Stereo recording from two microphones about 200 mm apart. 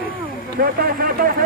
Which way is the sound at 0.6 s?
45° right (ahead or behind).